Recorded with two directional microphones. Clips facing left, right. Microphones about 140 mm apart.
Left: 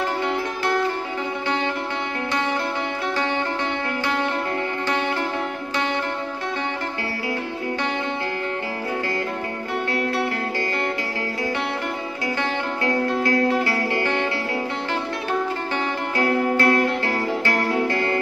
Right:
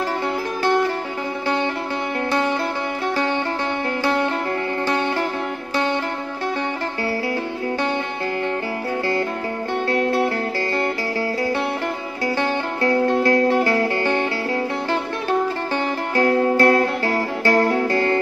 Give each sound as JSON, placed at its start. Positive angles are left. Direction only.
{"t": 9.8, "sound": "music", "side_deg": -30}
{"t": 12.4, "sound": "music", "side_deg": -30}
{"t": 16.2, "sound": "music", "side_deg": -35}